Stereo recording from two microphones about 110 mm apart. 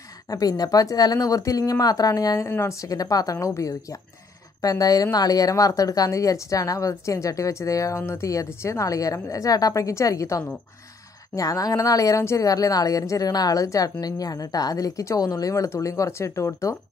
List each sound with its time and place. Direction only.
0.3 s a woman's voice: 35° left (ahead or behind)